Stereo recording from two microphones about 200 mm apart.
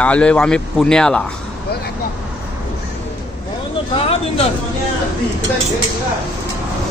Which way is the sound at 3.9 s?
30° left (ahead or behind).